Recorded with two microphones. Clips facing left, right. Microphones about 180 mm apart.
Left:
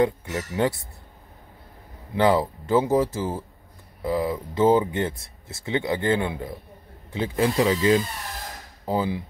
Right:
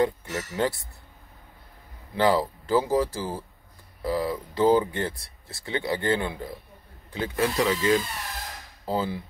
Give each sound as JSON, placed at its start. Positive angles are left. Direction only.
{"t": 0.0, "sound": "speech", "side_deg": 20}
{"t": 2.1, "sound": "speech", "side_deg": 20}
{"t": 8.8, "sound": "speech", "side_deg": 15}